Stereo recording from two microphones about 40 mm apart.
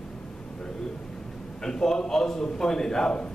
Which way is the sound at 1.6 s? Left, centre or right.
Centre.